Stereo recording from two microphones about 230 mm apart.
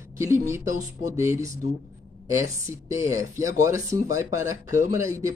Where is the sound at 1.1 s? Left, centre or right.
Centre.